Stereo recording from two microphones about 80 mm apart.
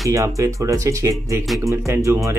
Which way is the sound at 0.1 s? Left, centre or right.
Right.